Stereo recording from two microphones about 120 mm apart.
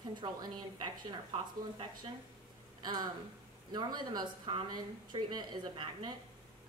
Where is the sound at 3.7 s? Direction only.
35° right (ahead or behind).